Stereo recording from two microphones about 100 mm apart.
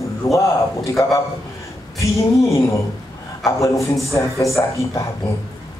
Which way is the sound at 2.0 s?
30° left (ahead or behind).